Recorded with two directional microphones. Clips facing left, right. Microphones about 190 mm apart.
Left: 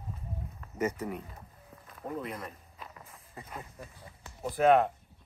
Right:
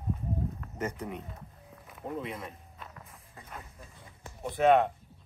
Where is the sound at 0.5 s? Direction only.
5° left (ahead or behind).